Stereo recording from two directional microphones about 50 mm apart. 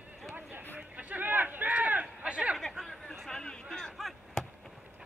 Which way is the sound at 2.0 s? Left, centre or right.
Right.